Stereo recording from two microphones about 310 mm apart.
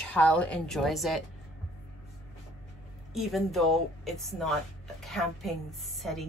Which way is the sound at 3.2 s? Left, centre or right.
Centre.